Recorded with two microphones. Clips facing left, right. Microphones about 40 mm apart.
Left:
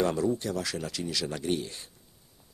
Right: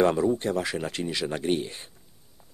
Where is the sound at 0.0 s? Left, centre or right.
Right.